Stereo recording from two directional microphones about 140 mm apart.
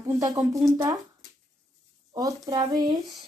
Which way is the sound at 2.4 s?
30° right (ahead or behind).